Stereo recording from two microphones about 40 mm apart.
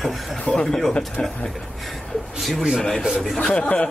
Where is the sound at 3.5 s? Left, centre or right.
Left.